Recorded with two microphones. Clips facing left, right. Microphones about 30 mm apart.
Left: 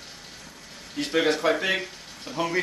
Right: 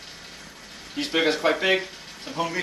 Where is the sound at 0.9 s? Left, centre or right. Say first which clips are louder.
Even; right.